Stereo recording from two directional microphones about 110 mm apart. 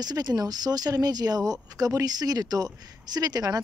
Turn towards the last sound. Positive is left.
turn(degrees=-35)  # may be behind; listen again after turning